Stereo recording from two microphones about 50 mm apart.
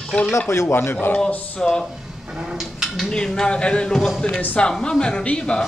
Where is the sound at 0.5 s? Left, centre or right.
Left.